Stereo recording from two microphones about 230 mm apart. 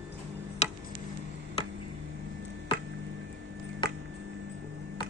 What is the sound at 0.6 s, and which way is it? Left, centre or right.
Tick-tock, left.